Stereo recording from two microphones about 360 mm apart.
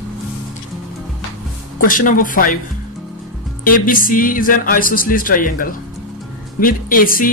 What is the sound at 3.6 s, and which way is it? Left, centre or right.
Speech, left.